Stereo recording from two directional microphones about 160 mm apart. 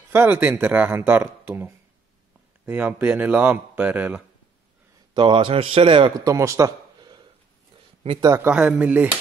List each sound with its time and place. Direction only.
0.1 s speech: 10° right (ahead or behind)
5.1 s a man's voice: 30° right (ahead or behind)
8.5 s speech: 5° right (ahead or behind)